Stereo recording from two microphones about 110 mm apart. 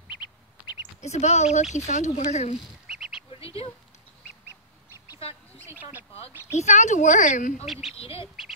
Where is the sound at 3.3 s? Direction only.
60° left (ahead or behind).